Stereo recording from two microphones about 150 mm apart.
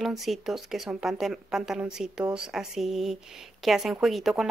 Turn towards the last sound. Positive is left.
turn(degrees=0)  # may be behind; listen again after turning